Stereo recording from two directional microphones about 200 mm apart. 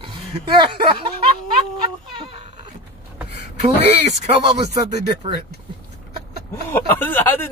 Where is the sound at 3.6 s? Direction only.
35° right (ahead or behind).